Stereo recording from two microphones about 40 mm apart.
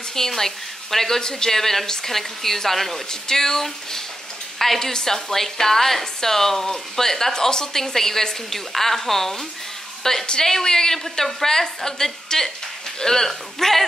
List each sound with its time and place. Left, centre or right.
0.1 s a woman's voice: centre
10.2 s a woman's voice: centre